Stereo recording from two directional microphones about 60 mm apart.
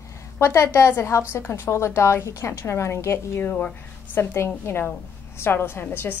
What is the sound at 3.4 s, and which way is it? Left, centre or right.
Speech, left.